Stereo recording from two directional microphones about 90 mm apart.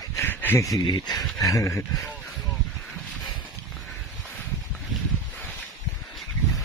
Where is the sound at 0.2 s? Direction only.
25° left (ahead or behind).